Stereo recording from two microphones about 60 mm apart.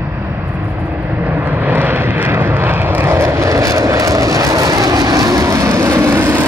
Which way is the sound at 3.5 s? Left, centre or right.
Right.